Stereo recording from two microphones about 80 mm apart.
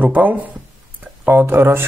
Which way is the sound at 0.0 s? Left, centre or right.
Right.